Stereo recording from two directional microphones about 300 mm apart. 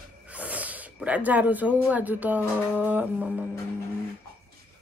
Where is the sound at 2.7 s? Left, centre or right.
Centre.